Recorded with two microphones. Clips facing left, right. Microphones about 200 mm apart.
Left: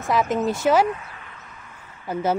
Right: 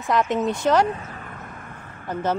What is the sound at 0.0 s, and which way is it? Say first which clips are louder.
Speech: even; centre (ahead or behind).